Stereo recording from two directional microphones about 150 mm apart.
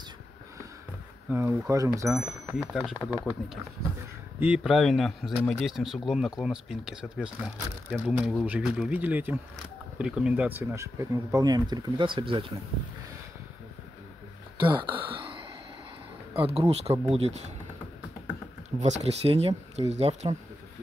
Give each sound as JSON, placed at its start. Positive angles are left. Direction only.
{"t": 1.7, "sound": "speech", "side_deg": -20}
{"t": 2.1, "sound": "speech", "side_deg": -5}
{"t": 2.8, "sound": "speech", "side_deg": 5}
{"t": 14.6, "sound": "a sound", "side_deg": -35}
{"t": 16.3, "sound": "speech", "side_deg": -40}
{"t": 18.8, "sound": "speech", "side_deg": -45}